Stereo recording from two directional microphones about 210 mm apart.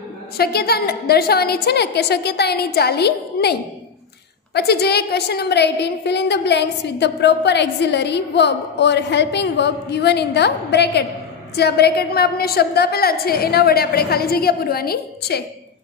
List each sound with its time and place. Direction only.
0.4 s a woman's voice: 50° left (ahead or behind)
4.6 s a woman's voice: 50° left (ahead or behind)